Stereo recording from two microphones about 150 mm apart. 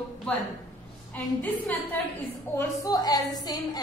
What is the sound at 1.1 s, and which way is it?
A woman's voice, 10° left (ahead or behind).